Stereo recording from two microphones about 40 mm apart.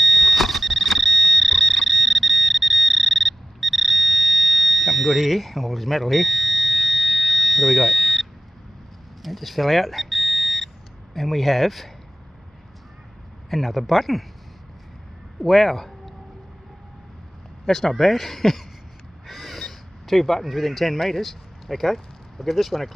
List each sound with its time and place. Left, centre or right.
0.0 s fire alarm: centre
9.2 s buzzer: centre
11.1 s speech: centre
13.5 s speech: centre
15.4 s speech: centre
17.6 s speech: centre
19.2 s crow: centre